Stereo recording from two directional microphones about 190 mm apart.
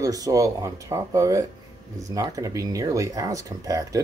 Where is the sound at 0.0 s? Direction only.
20° right (ahead or behind).